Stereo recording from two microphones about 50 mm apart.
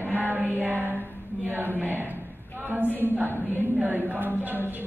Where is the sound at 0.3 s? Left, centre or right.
Right.